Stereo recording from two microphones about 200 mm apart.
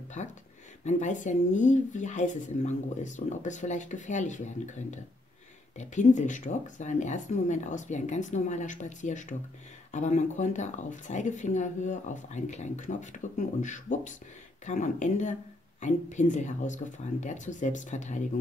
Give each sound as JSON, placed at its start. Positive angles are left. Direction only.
{"t": 0.2, "sound": "speech", "side_deg": 35}